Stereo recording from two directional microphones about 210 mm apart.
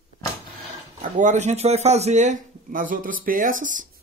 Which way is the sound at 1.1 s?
35° right (ahead or behind).